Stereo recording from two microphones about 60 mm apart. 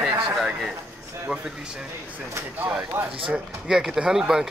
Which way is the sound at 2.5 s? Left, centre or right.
Right.